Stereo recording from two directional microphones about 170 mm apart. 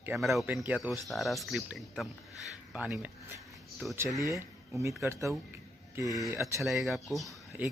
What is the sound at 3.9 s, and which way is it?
Speech, 20° right (ahead or behind).